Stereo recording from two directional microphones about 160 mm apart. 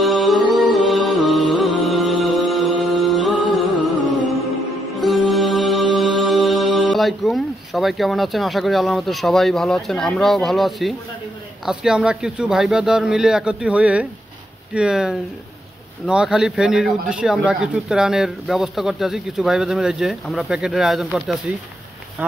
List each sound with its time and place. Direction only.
0.0 s music: centre (ahead or behind)
11.6 s speech: 5° right (ahead or behind)